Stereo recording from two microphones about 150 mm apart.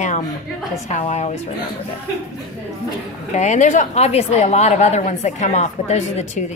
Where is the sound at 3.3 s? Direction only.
55° left (ahead or behind).